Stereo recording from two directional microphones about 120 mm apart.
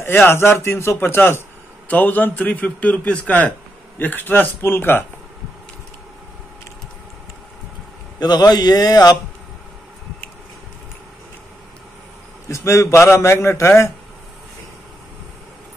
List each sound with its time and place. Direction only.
0.0 s a man's voice: 20° left (ahead or behind)
8.2 s a man's voice: 35° left (ahead or behind)
12.4 s a man's voice: 25° left (ahead or behind)